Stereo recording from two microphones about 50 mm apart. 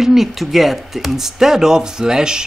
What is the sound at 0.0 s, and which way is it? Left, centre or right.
Speech, centre.